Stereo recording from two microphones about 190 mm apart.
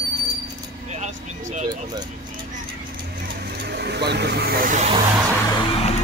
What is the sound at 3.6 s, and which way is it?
Vehicle, 60° right (ahead or behind).